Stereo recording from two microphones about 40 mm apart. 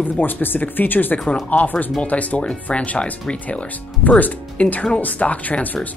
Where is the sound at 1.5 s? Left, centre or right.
Left.